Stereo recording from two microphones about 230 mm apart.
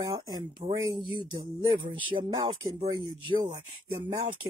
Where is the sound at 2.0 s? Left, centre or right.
Centre.